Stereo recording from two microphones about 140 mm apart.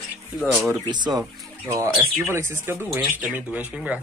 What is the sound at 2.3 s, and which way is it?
Speech, 20° right (ahead or behind).